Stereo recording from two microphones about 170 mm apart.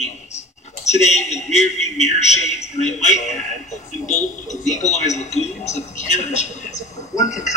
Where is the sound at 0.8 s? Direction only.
40° left (ahead or behind).